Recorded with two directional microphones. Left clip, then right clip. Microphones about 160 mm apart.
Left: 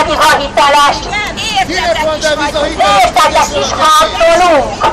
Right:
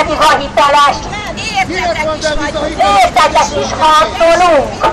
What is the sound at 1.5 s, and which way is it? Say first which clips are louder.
Speech: left 2 dB; 15° right (ahead or behind).